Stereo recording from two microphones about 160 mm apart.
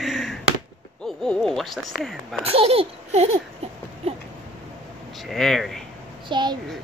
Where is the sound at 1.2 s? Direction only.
5° left (ahead or behind).